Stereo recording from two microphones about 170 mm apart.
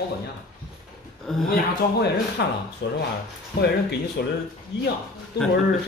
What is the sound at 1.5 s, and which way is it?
Speech, 75° left (ahead or behind).